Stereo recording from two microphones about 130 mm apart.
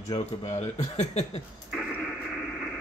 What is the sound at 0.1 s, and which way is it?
Speech, 60° left (ahead or behind).